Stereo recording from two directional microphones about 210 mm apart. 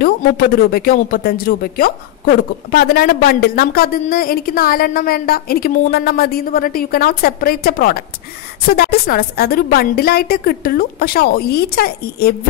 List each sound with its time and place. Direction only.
0.0 s speech: 45° left (ahead or behind)